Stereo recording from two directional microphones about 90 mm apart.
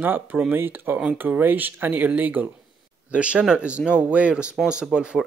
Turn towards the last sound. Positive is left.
turn(degrees=-10)  # may be behind; listen again after turning